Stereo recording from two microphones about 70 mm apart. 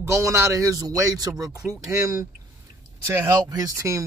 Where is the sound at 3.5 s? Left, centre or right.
Right.